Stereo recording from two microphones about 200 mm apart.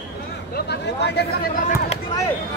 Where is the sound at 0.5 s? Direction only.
55° left (ahead or behind).